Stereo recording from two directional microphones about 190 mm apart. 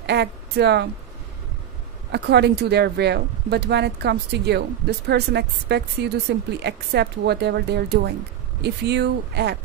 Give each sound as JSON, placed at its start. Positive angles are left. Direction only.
{"t": 0.0, "sound": "speech", "side_deg": -60}
{"t": 2.1, "sound": "speech", "side_deg": -60}